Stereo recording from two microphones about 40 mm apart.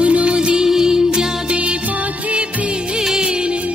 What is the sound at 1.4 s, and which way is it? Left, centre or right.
Music, right.